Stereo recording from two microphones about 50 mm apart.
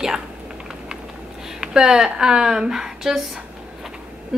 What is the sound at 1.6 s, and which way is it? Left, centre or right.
A woman's voice, centre.